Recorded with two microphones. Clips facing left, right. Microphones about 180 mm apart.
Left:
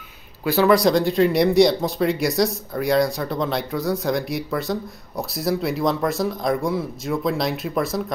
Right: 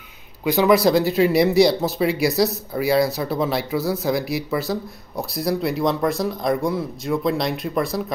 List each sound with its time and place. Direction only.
0.5 s speech: 15° right (ahead or behind)
0.7 s speech: 5° right (ahead or behind)